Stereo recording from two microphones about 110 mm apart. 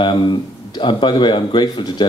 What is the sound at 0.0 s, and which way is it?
Speech, 45° left (ahead or behind).